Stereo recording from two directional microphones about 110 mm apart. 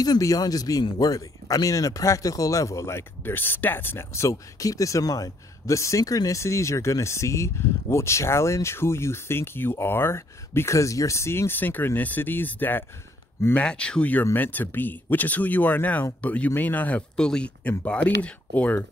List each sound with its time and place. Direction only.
0.0 s speech: 35° left (ahead or behind); by 18.8 s 10° left (ahead or behind)